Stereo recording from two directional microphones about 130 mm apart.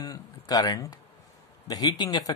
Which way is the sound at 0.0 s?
30° left (ahead or behind).